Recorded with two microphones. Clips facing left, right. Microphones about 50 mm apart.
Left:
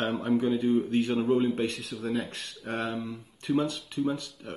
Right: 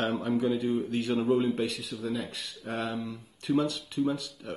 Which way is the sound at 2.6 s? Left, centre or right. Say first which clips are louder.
Left 1 dB; centre.